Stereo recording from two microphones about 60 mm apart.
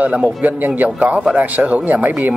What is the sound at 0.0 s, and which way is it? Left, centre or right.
Speech, right.